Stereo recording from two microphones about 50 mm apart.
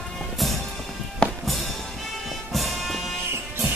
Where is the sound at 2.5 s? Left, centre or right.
Centre.